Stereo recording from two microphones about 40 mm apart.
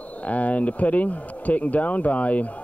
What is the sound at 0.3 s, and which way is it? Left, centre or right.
Speech, left.